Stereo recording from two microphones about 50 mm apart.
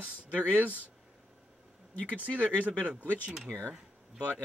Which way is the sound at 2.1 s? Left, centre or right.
Right.